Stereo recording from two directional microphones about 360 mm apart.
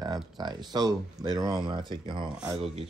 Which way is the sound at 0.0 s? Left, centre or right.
Centre.